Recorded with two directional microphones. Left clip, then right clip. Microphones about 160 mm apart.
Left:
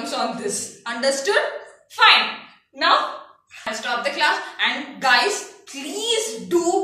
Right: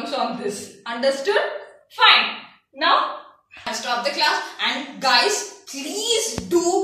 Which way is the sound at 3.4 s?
20° right (ahead or behind).